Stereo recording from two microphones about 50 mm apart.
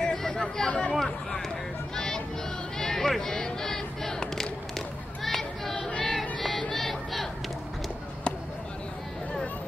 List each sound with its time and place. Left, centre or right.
0.0 s chatter: centre
0.7 s speech: left
0.9 s speech: centre
2.0 s music: centre
2.8 s a sound: centre
5.8 s choir: left
6.0 s music: centre
6.7 s a sound: centre